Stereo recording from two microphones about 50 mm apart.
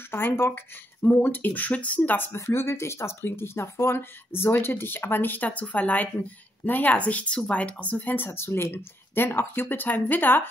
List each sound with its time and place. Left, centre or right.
0.1 s speech: left
1.2 s speech: left
2.3 s speech: left
7.1 s speech: left
8.3 s speech: left